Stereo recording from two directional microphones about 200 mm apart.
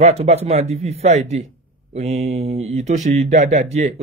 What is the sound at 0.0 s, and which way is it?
Speech, 30° right (ahead or behind).